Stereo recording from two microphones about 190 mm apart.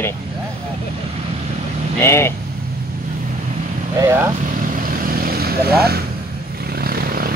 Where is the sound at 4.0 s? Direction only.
15° right (ahead or behind).